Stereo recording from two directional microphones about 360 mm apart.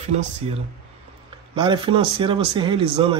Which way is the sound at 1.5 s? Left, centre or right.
Centre.